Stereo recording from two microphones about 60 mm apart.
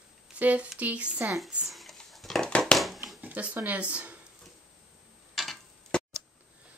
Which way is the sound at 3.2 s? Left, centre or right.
Right.